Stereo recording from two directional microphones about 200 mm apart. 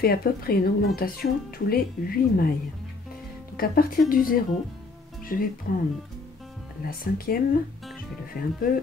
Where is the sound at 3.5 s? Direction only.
45° left (ahead or behind).